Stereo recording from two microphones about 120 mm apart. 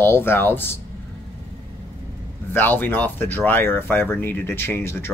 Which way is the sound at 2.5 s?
15° left (ahead or behind).